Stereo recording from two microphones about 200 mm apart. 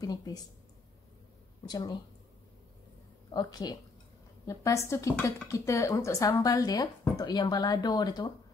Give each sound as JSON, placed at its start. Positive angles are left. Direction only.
{"t": 0.0, "sound": "speech", "side_deg": 20}
{"t": 1.7, "sound": "speech", "side_deg": 20}
{"t": 3.3, "sound": "speech", "side_deg": 20}